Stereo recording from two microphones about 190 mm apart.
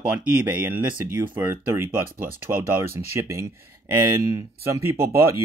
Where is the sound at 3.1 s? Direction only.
15° right (ahead or behind).